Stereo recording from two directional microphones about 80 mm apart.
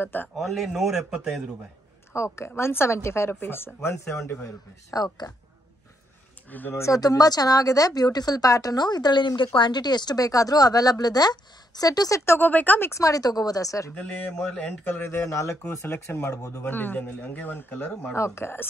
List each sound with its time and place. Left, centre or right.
0.0 s speech: left
0.4 s a man's voice: centre
2.1 s speech: left
4.9 s speech: left
6.5 s speech: left
6.8 s speech: left
12.3 s speech: left
12.9 s speech: left
14.3 s speech: centre
15.0 s speech: left
16.6 s speech: left
18.1 s speech: left